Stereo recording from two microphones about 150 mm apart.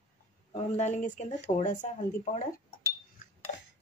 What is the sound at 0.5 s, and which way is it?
Speech, 50° left (ahead or behind).